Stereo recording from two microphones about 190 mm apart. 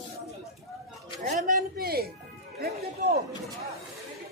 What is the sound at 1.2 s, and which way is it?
Music, 45° right (ahead or behind).